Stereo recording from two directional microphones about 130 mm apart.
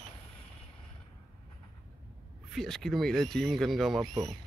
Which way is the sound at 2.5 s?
5° left (ahead or behind).